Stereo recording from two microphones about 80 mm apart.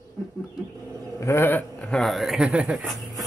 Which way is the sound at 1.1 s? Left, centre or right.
Left.